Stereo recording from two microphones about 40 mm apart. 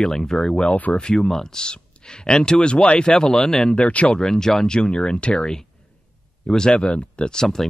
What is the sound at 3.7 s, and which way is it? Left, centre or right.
Speech, left.